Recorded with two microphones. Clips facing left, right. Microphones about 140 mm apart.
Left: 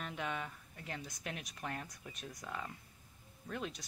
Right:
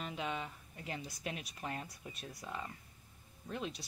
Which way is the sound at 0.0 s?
15° right (ahead or behind).